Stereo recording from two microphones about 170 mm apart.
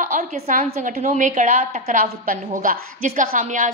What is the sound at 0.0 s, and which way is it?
A woman's voice, 50° right (ahead or behind).